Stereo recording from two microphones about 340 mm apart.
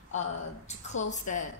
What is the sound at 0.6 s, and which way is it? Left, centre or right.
Speech, left.